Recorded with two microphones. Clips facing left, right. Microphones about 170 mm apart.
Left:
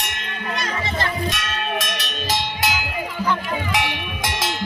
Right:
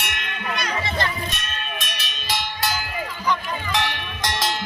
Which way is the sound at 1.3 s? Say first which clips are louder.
Left 7 dB; 90° left.